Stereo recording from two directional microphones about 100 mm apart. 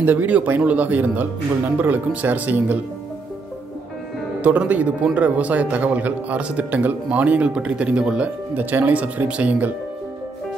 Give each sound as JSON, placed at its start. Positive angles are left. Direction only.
{"t": 0.0, "sound": "speech", "side_deg": -20}
{"t": 4.4, "sound": "speech", "side_deg": -15}